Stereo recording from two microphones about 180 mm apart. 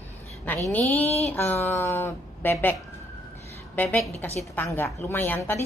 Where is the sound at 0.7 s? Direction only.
10° left (ahead or behind).